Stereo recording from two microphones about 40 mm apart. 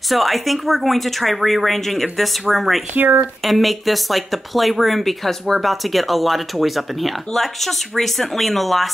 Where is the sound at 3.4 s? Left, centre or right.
Centre.